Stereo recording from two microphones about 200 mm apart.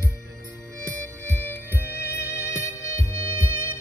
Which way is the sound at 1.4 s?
10° left (ahead or behind).